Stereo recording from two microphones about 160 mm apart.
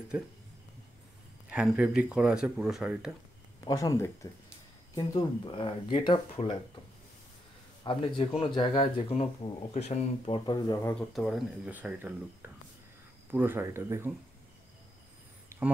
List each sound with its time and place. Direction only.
1.5 s speech: 5° right (ahead or behind)
3.6 s speech: 20° left (ahead or behind)
7.8 s speech: 30° left (ahead or behind)
11.0 s speech: centre (ahead or behind); by 14.1 s 15° right (ahead or behind)